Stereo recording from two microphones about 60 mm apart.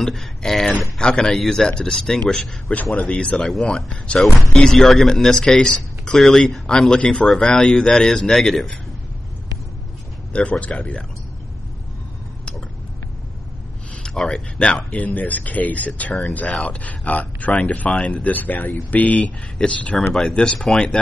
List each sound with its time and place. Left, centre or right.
0.0 s speech: centre
2.7 s speech: left
4.7 s speech: centre
10.6 s speech: left
14.0 s speech: centre
20.0 s speech: centre